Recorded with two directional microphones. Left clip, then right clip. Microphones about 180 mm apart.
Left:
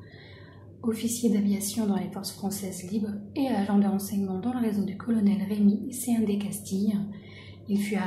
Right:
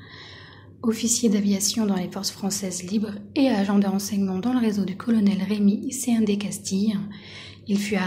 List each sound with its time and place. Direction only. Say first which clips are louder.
0.8 s a woman's voice: right 5 dB; 25° right (ahead or behind)